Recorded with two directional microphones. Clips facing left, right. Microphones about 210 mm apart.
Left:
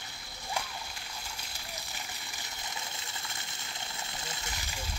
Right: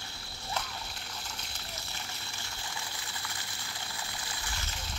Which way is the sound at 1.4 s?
15° left (ahead or behind).